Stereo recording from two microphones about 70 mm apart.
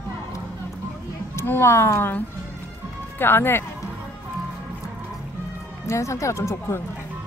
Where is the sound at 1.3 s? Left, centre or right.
Left.